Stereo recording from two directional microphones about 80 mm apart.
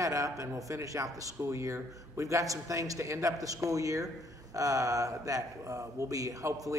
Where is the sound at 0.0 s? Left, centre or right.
Right.